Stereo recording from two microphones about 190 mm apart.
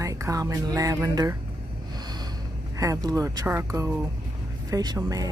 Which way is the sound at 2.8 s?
20° right (ahead or behind).